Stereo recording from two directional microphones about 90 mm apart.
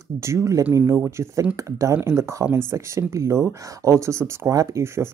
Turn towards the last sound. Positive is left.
turn(degrees=-30)  # may be behind; listen again after turning